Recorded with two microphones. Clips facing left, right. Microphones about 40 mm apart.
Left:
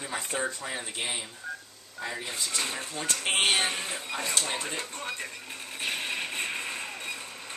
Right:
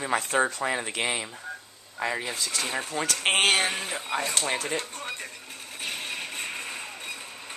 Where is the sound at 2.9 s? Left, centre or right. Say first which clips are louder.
Right 6 dB; right.